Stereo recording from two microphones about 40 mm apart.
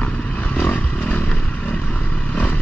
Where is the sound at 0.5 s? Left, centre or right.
Left.